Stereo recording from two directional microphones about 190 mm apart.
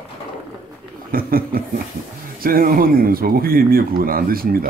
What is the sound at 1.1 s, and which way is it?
Speech, 50° right (ahead or behind).